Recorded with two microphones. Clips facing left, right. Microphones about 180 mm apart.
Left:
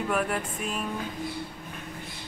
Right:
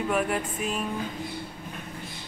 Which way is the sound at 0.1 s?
5° right (ahead or behind).